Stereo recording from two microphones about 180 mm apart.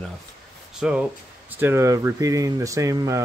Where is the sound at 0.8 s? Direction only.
5° right (ahead or behind).